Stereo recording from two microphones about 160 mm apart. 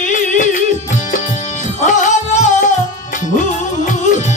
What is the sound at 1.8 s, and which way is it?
Music, 50° left (ahead or behind).